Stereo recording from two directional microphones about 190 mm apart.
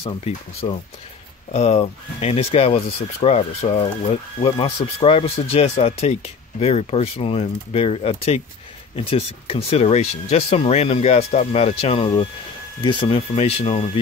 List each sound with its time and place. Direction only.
0.0 s speech: 30° left (ahead or behind)